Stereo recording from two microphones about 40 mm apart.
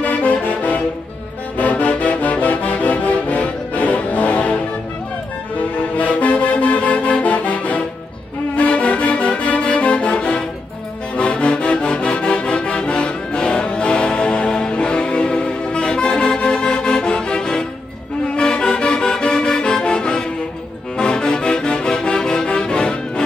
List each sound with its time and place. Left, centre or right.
0.0 s music: left
5.6 s music: left
18.3 s accordion: left
20.9 s music: left